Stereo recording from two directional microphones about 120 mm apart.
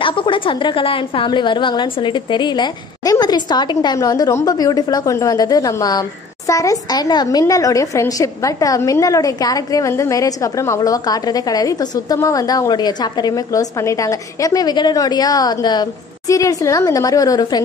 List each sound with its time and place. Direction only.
0.0 s a woman's voice: 45° left (ahead or behind)